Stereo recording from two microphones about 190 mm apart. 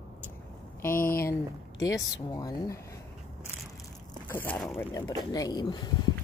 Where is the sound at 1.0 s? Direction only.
50° left (ahead or behind).